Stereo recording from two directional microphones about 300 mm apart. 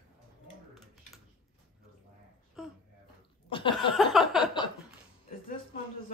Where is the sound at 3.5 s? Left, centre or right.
Centre.